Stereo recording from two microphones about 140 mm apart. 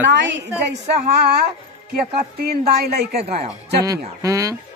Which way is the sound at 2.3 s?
90° right.